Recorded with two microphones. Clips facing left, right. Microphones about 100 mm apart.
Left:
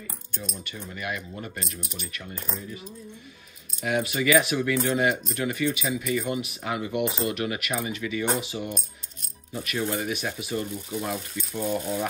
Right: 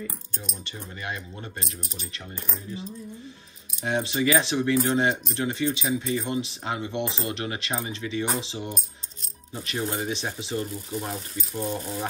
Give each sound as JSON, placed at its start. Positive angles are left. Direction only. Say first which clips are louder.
{"t": 1.0, "sound": "speech", "louder": "left 2 dB", "side_deg": -30}
{"t": 3.8, "sound": "speech", "louder": "even", "side_deg": -30}